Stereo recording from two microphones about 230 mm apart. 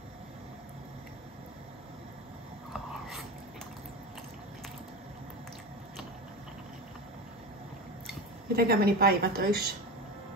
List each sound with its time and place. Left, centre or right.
8.5 s a woman's voice: right